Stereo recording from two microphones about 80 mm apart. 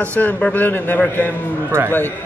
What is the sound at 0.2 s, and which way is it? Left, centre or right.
A man's voice, left.